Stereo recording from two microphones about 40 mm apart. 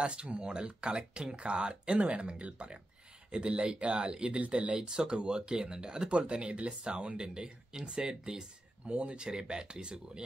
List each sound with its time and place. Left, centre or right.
0.0 s speech: right